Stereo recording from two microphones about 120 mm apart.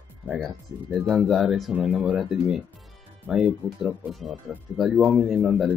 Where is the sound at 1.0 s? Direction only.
Centre (ahead or behind).